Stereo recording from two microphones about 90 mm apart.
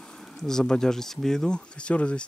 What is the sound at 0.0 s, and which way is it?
Speech, 5° left (ahead or behind).